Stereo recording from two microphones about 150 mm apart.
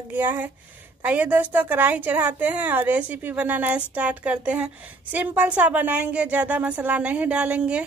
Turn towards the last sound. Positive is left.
turn(degrees=-5)  # may be behind; listen again after turning